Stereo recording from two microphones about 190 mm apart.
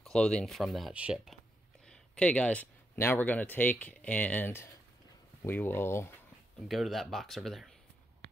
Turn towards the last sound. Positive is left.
turn(degrees=0)  # may be behind; listen again after turning